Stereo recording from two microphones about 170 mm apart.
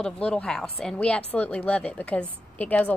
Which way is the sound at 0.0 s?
5° left (ahead or behind).